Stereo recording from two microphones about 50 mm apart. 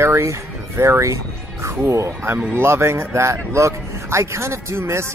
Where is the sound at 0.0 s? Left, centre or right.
Right.